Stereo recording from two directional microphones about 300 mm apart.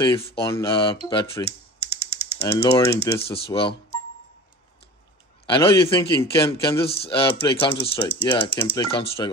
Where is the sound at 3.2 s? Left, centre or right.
Centre.